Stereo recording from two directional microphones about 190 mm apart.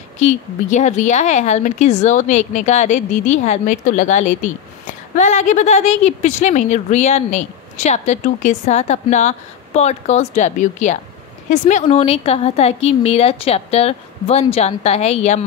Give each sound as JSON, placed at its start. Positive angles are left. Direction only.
{"t": 0.2, "sound": "a woman's voice", "side_deg": 35}